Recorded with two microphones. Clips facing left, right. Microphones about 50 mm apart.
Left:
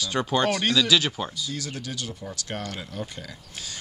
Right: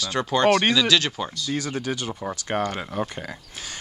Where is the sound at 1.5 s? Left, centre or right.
Right.